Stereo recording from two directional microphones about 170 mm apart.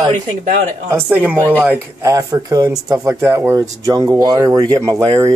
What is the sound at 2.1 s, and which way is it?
Speech, 20° right (ahead or behind).